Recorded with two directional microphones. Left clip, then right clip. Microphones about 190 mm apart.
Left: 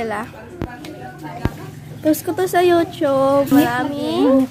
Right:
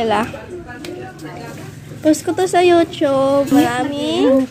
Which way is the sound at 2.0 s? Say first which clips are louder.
Right 3 dB; 5° left (ahead or behind).